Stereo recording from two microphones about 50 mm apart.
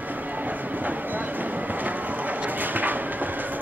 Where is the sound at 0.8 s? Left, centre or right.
Right.